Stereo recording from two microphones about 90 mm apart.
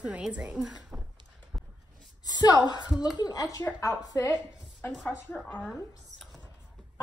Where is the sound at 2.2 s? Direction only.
45° left (ahead or behind).